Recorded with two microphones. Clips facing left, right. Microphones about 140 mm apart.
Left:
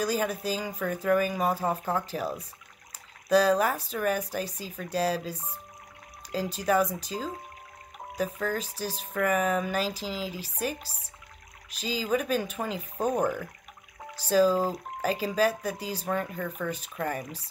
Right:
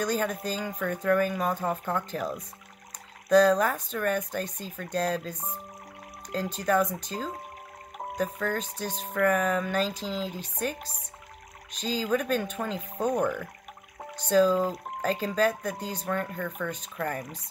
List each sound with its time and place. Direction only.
0.0 s speech: 10° left (ahead or behind)